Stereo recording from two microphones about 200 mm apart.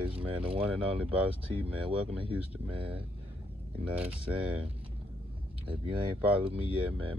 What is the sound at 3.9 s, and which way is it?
Speech, 5° right (ahead or behind).